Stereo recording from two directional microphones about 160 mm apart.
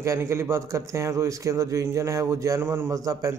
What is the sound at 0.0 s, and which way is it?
A man's voice, 15° right (ahead or behind).